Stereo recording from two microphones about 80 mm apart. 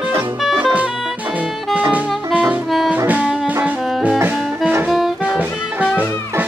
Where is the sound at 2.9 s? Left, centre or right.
Right.